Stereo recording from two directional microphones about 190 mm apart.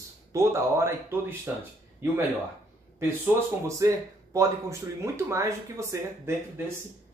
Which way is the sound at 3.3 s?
15° right (ahead or behind).